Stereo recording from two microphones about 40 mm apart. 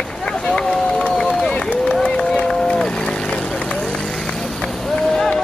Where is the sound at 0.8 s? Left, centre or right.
Left.